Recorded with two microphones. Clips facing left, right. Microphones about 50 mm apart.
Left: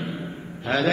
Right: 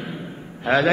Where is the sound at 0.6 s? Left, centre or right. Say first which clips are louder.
Right 5 dB; right.